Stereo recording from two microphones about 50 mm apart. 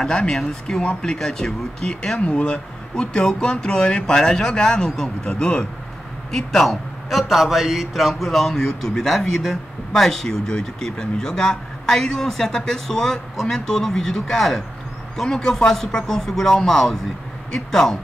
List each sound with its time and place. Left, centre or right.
0.0 s a man's voice: centre
6.3 s a man's voice: centre